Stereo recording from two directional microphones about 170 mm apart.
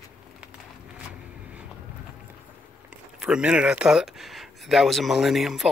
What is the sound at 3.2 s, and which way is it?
Speech, 5° right (ahead or behind).